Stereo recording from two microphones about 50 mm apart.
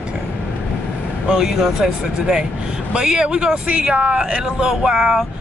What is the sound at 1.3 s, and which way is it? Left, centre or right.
Speech, centre.